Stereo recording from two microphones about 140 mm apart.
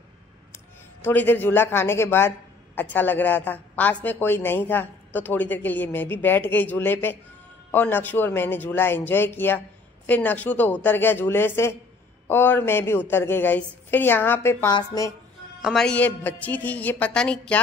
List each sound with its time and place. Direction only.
1.0 s a man's voice: 15° left (ahead or behind)
14.7 s speech: 30° left (ahead or behind)
15.6 s a man's voice: 5° left (ahead or behind)